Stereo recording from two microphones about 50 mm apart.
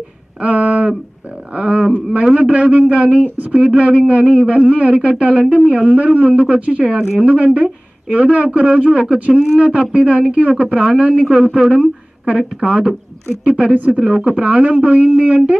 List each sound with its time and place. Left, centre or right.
0.4 s a man's voice: right
3.6 s a man's voice: right